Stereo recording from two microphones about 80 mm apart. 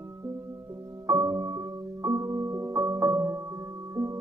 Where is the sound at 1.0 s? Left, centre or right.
Right.